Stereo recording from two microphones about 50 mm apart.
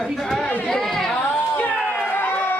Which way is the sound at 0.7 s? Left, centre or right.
Centre.